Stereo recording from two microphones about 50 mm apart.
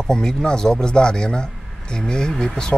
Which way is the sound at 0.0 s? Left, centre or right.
Centre.